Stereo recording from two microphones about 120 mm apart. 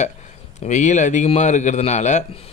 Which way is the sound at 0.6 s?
85° left.